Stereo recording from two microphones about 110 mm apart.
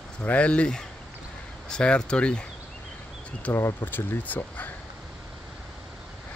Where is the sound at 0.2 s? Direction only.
10° left (ahead or behind).